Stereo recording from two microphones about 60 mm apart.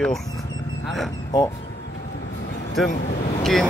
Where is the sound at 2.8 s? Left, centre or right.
Centre.